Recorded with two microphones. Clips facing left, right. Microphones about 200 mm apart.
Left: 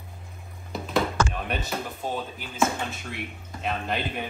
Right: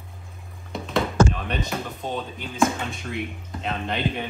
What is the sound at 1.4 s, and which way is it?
Speech, 5° left (ahead or behind).